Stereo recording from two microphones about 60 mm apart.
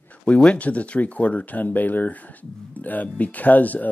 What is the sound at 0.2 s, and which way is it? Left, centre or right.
Speech, centre.